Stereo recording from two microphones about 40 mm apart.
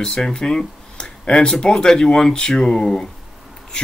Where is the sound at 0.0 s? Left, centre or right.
Centre.